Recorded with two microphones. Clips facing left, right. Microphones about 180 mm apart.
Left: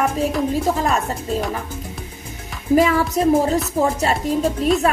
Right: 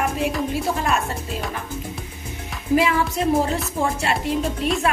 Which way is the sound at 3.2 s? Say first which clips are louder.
Left 6 dB; 40° left (ahead or behind).